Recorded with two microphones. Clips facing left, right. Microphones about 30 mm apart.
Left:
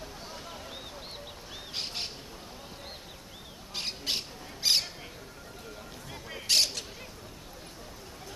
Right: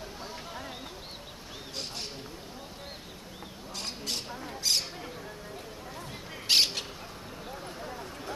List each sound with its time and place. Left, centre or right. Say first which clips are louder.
3.7 s owl: left 3 dB; left
6.4 s bird: right 2 dB; right